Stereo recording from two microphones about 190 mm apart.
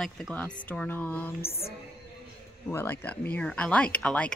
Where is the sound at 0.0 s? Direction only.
5° left (ahead or behind).